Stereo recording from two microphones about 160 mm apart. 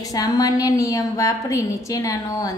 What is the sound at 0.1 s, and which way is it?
A woman's voice, 25° left (ahead or behind).